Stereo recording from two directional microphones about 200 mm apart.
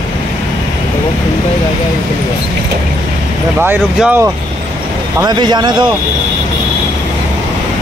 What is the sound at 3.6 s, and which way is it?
Speech, 10° right (ahead or behind).